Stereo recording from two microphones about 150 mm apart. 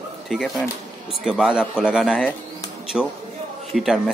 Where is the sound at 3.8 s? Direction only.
Centre (ahead or behind).